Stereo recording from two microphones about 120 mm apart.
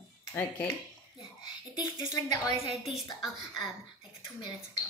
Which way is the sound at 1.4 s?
40° left (ahead or behind).